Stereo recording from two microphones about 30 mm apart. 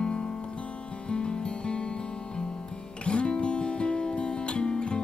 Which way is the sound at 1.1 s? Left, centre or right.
Left.